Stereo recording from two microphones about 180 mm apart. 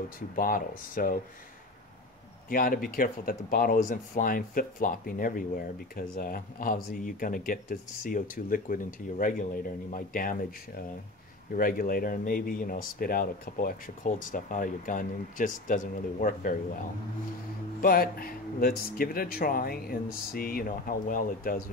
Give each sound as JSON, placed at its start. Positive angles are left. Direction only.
{"t": 0.4, "sound": "speech", "side_deg": 50}
{"t": 2.5, "sound": "speech", "side_deg": 50}
{"t": 11.5, "sound": "speech", "side_deg": 50}
{"t": 17.7, "sound": "speech", "side_deg": 55}